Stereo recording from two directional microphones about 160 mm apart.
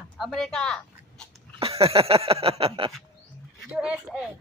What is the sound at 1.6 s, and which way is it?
Speech, 40° right (ahead or behind).